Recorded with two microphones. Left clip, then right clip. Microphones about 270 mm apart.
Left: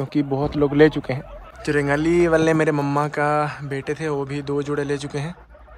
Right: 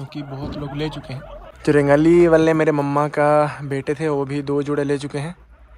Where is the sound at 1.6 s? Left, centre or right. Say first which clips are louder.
Right 6 dB; centre.